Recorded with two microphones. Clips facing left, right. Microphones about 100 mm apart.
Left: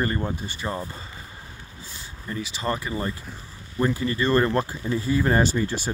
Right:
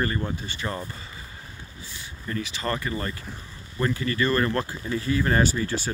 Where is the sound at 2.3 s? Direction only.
20° left (ahead or behind).